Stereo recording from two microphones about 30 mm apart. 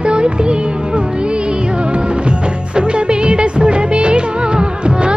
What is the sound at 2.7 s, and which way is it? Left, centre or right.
Music of bollywood, right.